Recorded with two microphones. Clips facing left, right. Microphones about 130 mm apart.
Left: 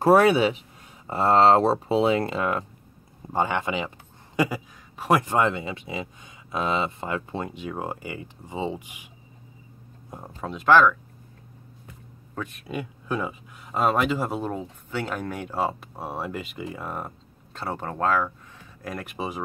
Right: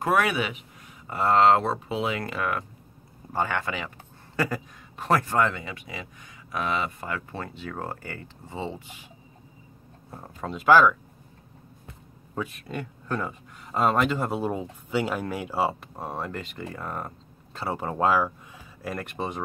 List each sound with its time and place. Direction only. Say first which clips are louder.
0.0 s speech: left 7 dB; 30° left (ahead or behind); by 9.1 s 15° left (ahead or behind)
10.1 s speech: left 1 dB; 10° left (ahead or behind)
10.5 s speech: even; 5° right (ahead or behind)
12.4 s speech: even; centre (ahead or behind)
16.1 s speech: left 2 dB; 5° left (ahead or behind); by 18.3 s 10° right (ahead or behind)
18.8 s speech: right 1 dB; centre (ahead or behind)